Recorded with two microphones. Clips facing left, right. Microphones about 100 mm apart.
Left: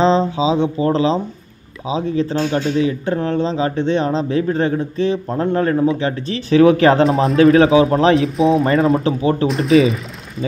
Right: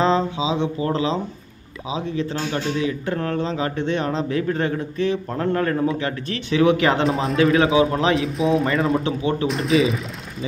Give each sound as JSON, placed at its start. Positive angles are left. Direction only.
{"t": 0.0, "sound": "a man's voice", "side_deg": 30}
{"t": 7.1, "sound": "speech", "side_deg": 0}
{"t": 7.5, "sound": "speech", "side_deg": 35}
{"t": 8.4, "sound": "speech", "side_deg": 0}
{"t": 9.0, "sound": "speech", "side_deg": 35}
{"t": 9.5, "sound": "speech", "side_deg": 0}